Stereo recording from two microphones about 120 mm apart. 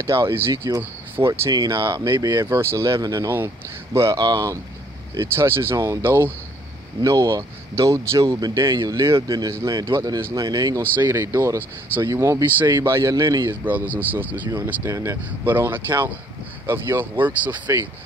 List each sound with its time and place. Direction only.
0.0 s speech: 20° right (ahead or behind)
1.5 s speech: 40° right (ahead or behind)
2.5 s speech: 20° right (ahead or behind)
13.5 s speech: 15° right (ahead or behind)